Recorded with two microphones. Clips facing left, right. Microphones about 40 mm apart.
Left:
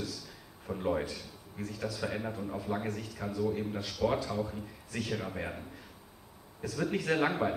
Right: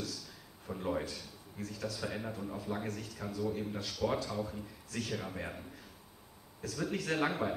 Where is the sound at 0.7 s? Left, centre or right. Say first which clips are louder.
Left 4 dB; centre.